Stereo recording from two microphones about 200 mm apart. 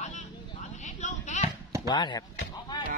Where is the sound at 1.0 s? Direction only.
35° left (ahead or behind).